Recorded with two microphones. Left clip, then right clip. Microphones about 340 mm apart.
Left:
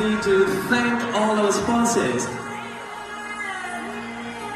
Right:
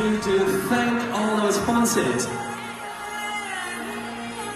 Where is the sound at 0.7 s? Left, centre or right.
Right.